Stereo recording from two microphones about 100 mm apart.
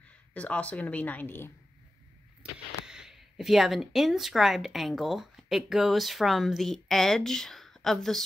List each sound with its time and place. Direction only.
0.3 s speech: 15° left (ahead or behind)
2.8 s speech: 5° right (ahead or behind)